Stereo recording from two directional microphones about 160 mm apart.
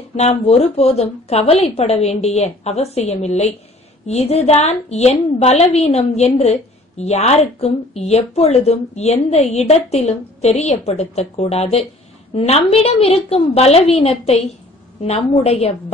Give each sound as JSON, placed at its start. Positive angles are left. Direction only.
{"t": 0.1, "sound": "a woman's voice", "side_deg": 40}